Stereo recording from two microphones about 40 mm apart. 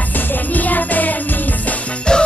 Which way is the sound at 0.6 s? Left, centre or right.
Left.